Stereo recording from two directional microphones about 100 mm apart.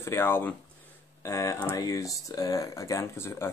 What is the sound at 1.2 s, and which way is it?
Speech, 30° left (ahead or behind).